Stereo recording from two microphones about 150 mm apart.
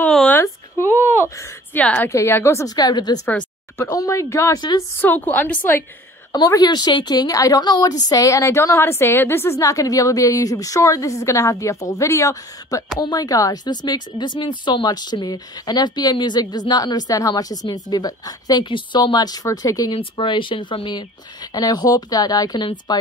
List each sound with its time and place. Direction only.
0.0 s a sound: 10° left (ahead or behind)
1.1 s a woman's voice: 15° left (ahead or behind)
3.3 s speech: 15° left (ahead or behind)
5.0 s a woman's voice: 10° left (ahead or behind)
6.3 s speech: 25° left (ahead or behind)